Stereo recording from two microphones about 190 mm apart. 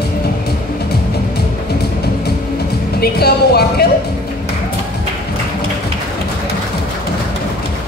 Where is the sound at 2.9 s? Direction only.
55° left (ahead or behind).